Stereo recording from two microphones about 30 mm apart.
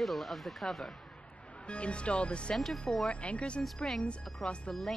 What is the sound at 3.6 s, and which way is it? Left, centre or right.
Speech, centre.